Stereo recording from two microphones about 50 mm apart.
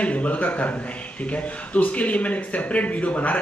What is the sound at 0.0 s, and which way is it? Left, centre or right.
A man's voice, left.